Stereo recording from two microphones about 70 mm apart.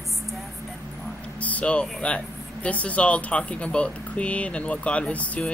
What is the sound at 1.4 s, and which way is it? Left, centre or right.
Speech, centre.